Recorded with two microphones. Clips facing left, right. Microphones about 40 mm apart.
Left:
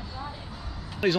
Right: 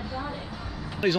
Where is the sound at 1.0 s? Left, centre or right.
Centre.